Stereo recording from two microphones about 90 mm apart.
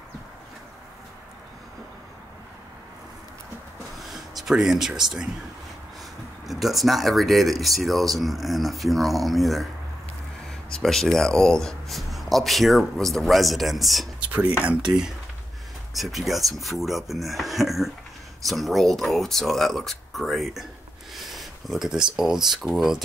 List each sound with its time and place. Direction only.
4.0 s a sound: centre (ahead or behind)
6.4 s speech: centre (ahead or behind)
10.7 s speech: 5° left (ahead or behind)
14.2 s cutlery: 15° right (ahead or behind)
14.9 s speech: 5° right (ahead or behind)